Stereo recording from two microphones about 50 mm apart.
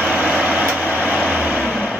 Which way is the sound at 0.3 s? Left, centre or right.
Right.